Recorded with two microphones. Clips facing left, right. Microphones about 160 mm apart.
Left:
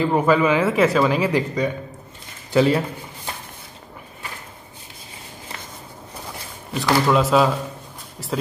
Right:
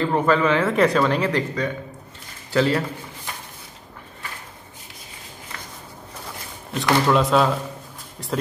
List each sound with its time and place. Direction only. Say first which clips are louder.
0.0 s speech: left 2 dB; 10° left (ahead or behind)
6.7 s speech: left 1 dB; centre (ahead or behind)